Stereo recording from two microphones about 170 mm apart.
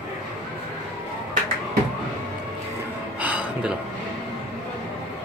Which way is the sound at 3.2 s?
5° right (ahead or behind).